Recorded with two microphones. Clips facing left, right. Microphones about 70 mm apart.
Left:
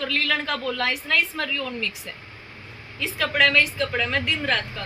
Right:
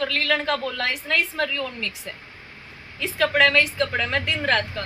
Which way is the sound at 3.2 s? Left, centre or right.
Right.